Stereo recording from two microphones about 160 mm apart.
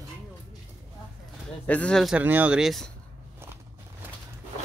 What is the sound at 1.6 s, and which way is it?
Speech, 10° left (ahead or behind).